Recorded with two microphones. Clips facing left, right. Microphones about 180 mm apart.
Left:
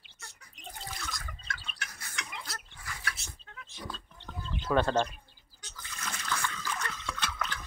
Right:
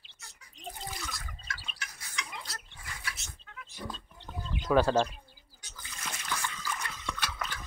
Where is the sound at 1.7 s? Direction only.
55° left (ahead or behind).